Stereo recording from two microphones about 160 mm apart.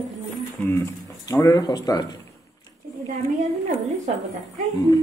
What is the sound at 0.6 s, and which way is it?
Speech, 20° left (ahead or behind).